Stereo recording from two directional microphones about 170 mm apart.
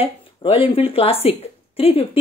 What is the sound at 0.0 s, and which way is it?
Speech, 35° left (ahead or behind).